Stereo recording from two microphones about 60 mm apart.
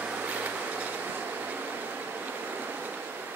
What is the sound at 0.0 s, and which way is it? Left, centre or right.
Vehicle, right.